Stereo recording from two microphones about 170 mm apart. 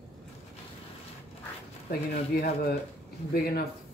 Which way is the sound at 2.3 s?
65° left (ahead or behind).